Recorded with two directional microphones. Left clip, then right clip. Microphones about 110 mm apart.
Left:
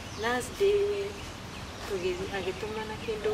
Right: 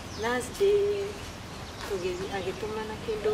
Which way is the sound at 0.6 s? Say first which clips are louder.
Right 2 dB; 5° right (ahead or behind).